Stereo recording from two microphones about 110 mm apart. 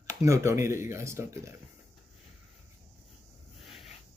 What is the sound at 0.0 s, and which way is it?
Speech, 30° right (ahead or behind).